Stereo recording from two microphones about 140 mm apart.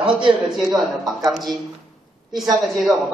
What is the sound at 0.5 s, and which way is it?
A man's voice, centre (ahead or behind).